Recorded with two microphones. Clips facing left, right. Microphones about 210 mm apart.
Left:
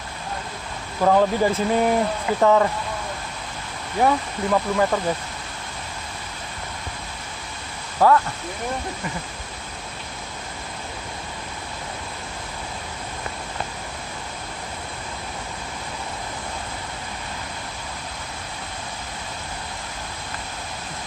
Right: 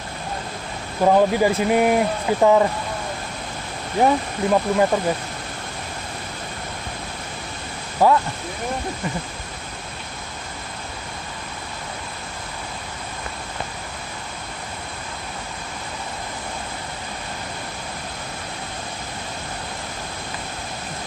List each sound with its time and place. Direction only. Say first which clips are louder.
1.0 s speech: right 2 dB; 15° right (ahead or behind)
4.0 s speech: right 2 dB; 20° right (ahead or behind)
8.0 s speech: even; 15° right (ahead or behind)